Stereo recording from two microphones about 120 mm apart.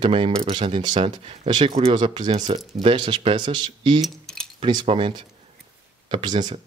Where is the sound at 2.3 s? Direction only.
80° right.